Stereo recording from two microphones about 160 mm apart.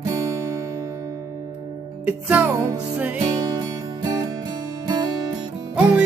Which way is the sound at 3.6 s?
25° right (ahead or behind).